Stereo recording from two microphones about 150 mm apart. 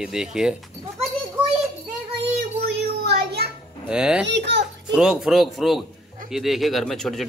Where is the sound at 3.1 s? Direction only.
90° right.